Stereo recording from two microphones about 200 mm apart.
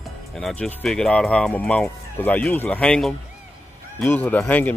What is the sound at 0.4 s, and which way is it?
Speech, 5° left (ahead or behind).